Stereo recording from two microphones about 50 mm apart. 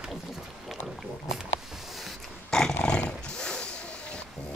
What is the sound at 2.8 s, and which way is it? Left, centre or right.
Horse, centre.